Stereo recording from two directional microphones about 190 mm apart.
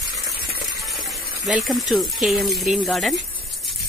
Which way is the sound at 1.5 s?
Centre (ahead or behind).